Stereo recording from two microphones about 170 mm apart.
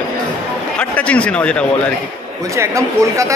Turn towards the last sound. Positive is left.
turn(degrees=-20)  # may be behind; listen again after turning